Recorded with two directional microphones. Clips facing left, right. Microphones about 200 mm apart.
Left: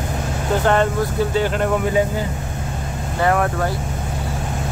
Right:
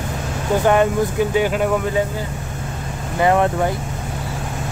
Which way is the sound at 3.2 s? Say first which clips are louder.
Right 3 dB; 20° right (ahead or behind).